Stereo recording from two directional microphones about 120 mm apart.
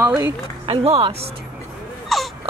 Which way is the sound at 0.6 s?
55° right (ahead or behind).